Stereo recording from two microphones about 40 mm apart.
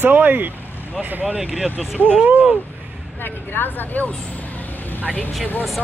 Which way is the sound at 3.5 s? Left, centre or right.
Left.